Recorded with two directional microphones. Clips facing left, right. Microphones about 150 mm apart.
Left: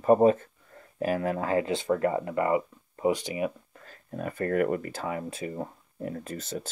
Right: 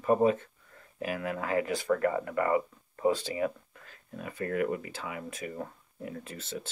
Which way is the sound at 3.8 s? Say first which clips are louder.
Left 7 dB; 45° left (ahead or behind).